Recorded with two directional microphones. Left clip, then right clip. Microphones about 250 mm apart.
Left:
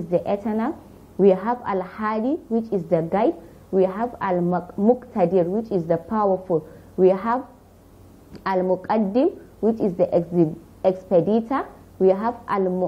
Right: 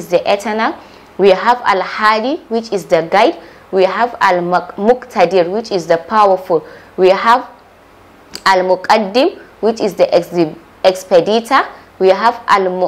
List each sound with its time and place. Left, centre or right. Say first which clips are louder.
0.1 s a woman's voice: right 10 dB; centre
4.6 s speech: right 8 dB; right
5.0 s a woman's voice: right 9 dB; centre
6.2 s speech: right 7 dB; right
7.0 s a woman's voice: right 10 dB; centre
8.3 s a sound: right 12 dB; centre
8.8 s a woman's voice: right 10 dB; centre